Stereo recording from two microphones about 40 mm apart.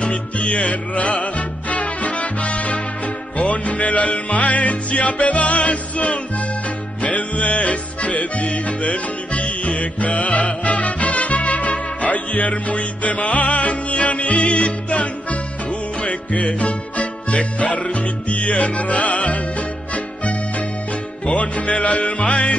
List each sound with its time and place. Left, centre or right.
0.0 s music: left